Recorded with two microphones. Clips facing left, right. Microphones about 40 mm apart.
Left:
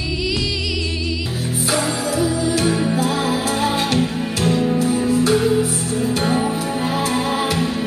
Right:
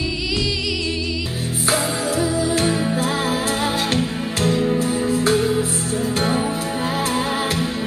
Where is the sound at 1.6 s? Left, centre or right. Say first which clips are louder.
Even; right.